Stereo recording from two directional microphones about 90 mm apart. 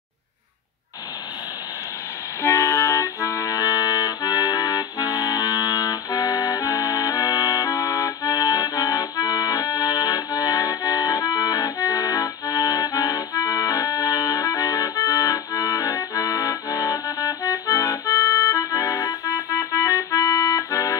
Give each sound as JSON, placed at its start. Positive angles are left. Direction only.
{"t": 2.4, "sound": "accordion", "side_deg": 35}